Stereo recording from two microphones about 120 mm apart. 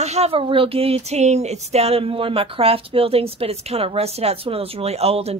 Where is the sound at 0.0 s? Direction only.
65° right (ahead or behind).